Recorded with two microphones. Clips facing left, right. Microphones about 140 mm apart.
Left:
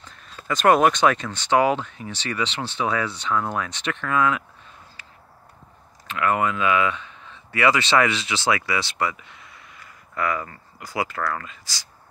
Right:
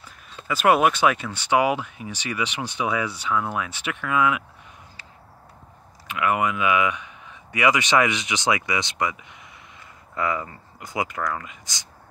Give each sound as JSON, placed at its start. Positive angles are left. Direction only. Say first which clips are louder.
{"t": 0.5, "sound": "speech", "louder": "left 1 dB", "side_deg": -10}
{"t": 6.0, "sound": "speech", "louder": "left 1 dB", "side_deg": -15}